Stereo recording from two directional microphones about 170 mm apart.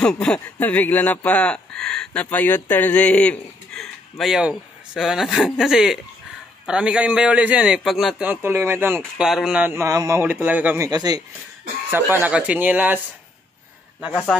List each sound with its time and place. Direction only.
0.0 s a man's voice: 5° left (ahead or behind)
8.3 s a man's voice: 15° right (ahead or behind)
9.2 s a man's voice: 5° right (ahead or behind)
10.9 s speech: 20° right (ahead or behind)
11.9 s a man's voice: 10° right (ahead or behind)
14.3 s a man's voice: centre (ahead or behind)